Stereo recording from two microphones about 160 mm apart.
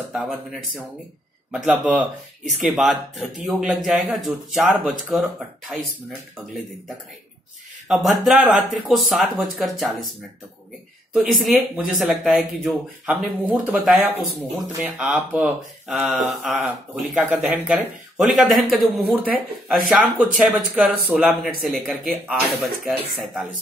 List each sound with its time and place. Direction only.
0.1 s speech: centre (ahead or behind)
7.9 s speech: centre (ahead or behind)
11.1 s speech: centre (ahead or behind)